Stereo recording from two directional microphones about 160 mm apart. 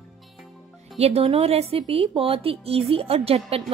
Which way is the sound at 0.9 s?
40° right (ahead or behind).